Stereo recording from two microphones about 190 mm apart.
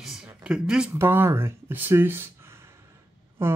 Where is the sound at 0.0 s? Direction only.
Centre (ahead or behind).